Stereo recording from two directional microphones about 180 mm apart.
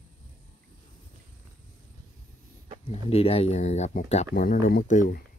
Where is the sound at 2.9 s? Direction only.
35° left (ahead or behind).